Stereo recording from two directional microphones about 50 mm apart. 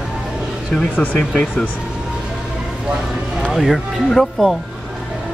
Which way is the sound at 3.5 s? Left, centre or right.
Centre.